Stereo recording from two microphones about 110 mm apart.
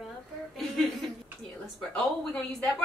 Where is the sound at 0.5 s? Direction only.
5° left (ahead or behind).